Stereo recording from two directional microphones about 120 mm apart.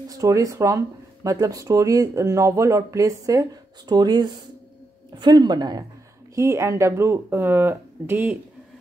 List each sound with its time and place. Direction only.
0.1 s speech: 30° right (ahead or behind)
6.3 s speech: 25° right (ahead or behind)